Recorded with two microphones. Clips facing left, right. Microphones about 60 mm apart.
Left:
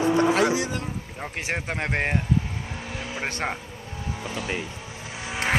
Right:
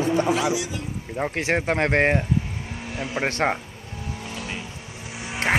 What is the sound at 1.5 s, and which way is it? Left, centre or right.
Speech, right.